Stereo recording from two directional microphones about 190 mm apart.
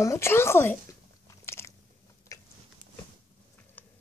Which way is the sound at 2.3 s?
20° left (ahead or behind).